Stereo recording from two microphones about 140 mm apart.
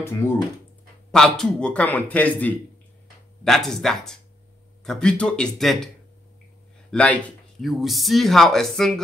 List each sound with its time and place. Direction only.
0.0 s speech: 20° left (ahead or behind)
1.1 s a man's voice: 5° left (ahead or behind)
6.9 s speech: 10° left (ahead or behind)